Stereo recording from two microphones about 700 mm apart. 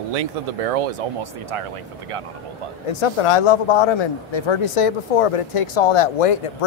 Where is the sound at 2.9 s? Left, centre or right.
Left.